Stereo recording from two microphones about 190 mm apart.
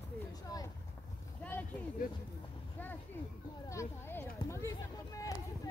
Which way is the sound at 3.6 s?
15° left (ahead or behind).